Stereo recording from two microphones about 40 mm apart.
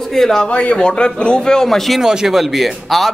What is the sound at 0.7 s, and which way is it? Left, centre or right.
Speech, left.